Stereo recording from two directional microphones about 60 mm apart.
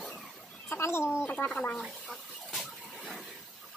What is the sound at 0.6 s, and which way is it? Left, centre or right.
Chicken, left.